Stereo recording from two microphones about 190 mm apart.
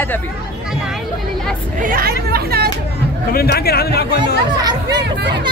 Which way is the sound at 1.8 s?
50° right (ahead or behind).